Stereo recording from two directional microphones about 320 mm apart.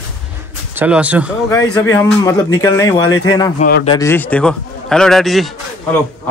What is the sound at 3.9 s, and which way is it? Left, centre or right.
A man's voice, centre.